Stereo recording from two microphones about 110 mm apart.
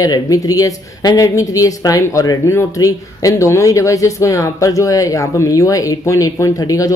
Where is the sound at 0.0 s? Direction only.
30° left (ahead or behind).